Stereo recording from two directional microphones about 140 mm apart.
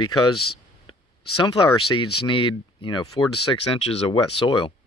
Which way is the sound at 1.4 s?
35° left (ahead or behind).